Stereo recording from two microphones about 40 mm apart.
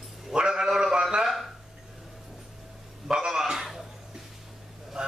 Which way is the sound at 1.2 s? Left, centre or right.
Centre.